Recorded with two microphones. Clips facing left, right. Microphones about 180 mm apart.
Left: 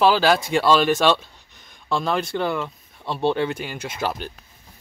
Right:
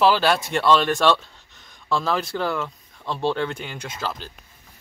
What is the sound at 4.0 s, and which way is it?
Speech, 20° left (ahead or behind).